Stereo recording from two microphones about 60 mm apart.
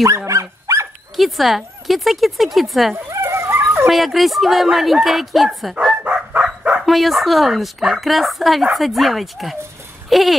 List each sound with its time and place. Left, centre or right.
0.3 s dog: right
1.1 s a woman's voice: centre
3.1 s dog: right
3.8 s a woman's voice: centre
6.0 s bow-wow: centre
6.8 s a woman's voice: centre
10.0 s a sound: centre